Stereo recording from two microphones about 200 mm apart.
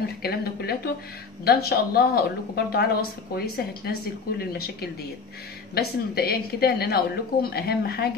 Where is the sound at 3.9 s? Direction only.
50° left (ahead or behind).